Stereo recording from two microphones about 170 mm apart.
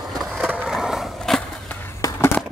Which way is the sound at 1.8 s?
15° left (ahead or behind).